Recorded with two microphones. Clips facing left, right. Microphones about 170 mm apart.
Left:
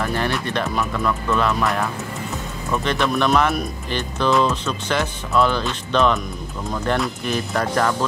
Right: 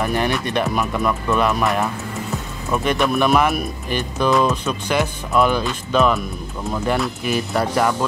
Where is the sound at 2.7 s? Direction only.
10° right (ahead or behind).